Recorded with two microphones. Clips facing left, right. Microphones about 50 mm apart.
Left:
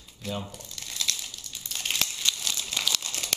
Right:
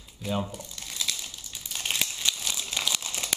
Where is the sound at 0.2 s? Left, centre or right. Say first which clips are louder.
Right 4 dB; centre.